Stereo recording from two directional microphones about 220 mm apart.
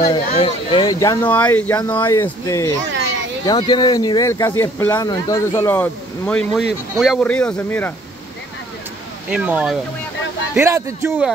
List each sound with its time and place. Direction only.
0.1 s speech: 25° left (ahead or behind); by 7.9 s 5° left (ahead or behind)
9.3 s speech: 5° right (ahead or behind)